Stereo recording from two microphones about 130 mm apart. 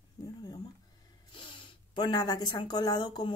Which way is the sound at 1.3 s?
40° left (ahead or behind).